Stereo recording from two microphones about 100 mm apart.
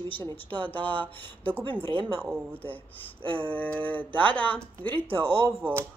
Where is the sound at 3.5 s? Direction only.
15° left (ahead or behind).